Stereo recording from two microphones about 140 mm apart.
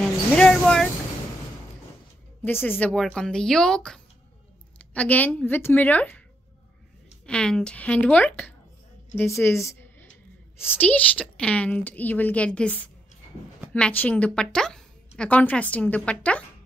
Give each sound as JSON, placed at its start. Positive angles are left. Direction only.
{"t": 0.4, "sound": "a sound", "side_deg": 5}
{"t": 2.4, "sound": "a woman's voice", "side_deg": 15}
{"t": 7.2, "sound": "a woman's voice", "side_deg": 5}
{"t": 10.6, "sound": "a woman's voice", "side_deg": 15}